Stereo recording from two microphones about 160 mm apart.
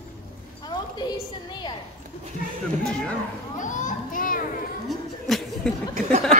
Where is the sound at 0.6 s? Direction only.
25° left (ahead or behind).